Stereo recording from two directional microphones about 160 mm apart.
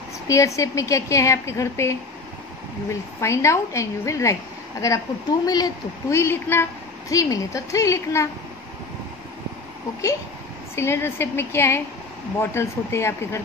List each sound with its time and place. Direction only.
0.3 s a woman's voice: 20° left (ahead or behind)
10.8 s a woman's voice: 15° left (ahead or behind)